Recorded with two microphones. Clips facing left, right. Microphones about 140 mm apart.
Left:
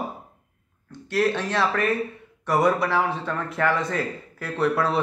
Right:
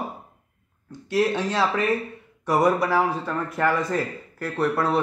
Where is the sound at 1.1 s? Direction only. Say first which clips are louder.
Right 1 dB; 10° right (ahead or behind).